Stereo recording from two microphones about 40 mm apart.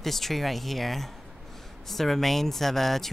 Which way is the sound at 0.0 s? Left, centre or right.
Centre.